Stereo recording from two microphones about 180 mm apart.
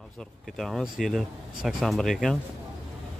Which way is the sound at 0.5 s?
Centre (ahead or behind).